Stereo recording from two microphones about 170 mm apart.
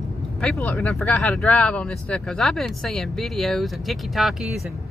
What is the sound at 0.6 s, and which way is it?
Speech, 10° left (ahead or behind).